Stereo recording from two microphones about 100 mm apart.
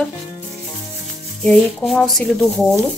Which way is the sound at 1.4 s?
Centre (ahead or behind).